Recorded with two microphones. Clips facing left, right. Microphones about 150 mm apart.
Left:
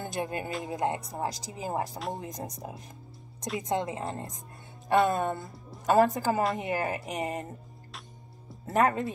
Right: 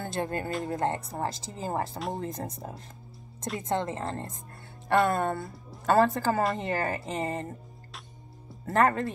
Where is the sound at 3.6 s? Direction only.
15° left (ahead or behind).